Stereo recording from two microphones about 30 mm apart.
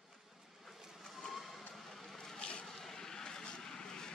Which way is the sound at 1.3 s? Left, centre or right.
Centre.